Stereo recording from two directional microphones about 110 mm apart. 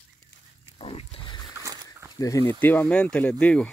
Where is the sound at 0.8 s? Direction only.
60° left (ahead or behind).